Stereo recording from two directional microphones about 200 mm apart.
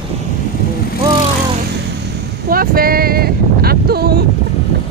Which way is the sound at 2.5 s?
45° right (ahead or behind).